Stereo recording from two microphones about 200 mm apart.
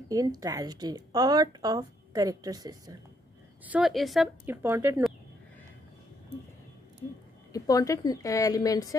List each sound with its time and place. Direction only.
0.1 s a woman's voice: 15° right (ahead or behind)
3.6 s speech: 5° right (ahead or behind)
4.6 s speech: 10° right (ahead or behind)
7.5 s a woman's voice: 15° left (ahead or behind)